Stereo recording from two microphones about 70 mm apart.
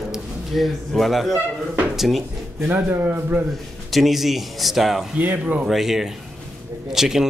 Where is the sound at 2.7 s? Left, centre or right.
Right.